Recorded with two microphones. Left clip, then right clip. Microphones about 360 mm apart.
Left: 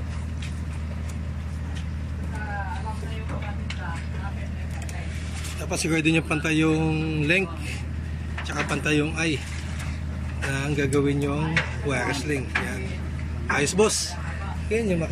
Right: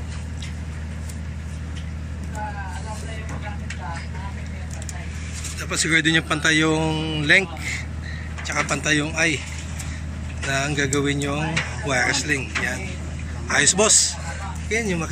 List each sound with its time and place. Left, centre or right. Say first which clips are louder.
5.7 s a man's voice: right 5 dB; centre
8.5 s a man's voice: right 4 dB; centre
10.5 s a man's voice: right 3 dB; centre